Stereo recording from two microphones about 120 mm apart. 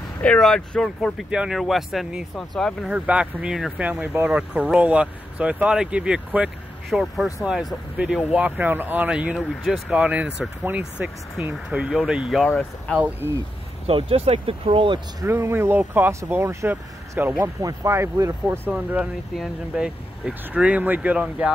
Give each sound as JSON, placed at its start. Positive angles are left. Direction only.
{"t": 0.2, "sound": "speech", "side_deg": 5}
{"t": 2.9, "sound": "speech", "side_deg": -10}
{"t": 13.8, "sound": "speech", "side_deg": -50}
{"t": 15.2, "sound": "speech", "side_deg": -20}
{"t": 18.7, "sound": "speech", "side_deg": -10}